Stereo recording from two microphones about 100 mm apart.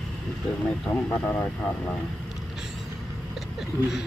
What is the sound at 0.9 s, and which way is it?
Speech, 20° left (ahead or behind).